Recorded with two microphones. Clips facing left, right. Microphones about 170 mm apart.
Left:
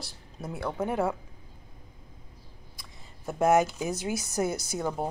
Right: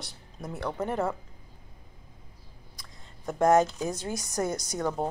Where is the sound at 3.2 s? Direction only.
5° left (ahead or behind).